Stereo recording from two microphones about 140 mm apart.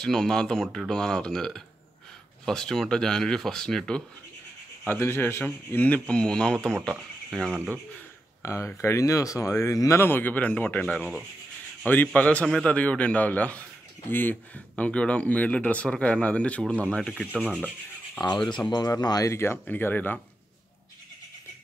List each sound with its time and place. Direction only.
0.0 s speech: 5° left (ahead or behind)
4.8 s a man's voice: 15° left (ahead or behind); by 7.6 s centre (ahead or behind)
8.4 s speech: 20° left (ahead or behind)
11.0 s speech: 5° right (ahead or behind)
11.8 s a man's voice: 10° left (ahead or behind)
17.3 s rub: 10° right (ahead or behind)
18.7 s a man's voice: 30° left (ahead or behind); by 20.2 s 15° left (ahead or behind)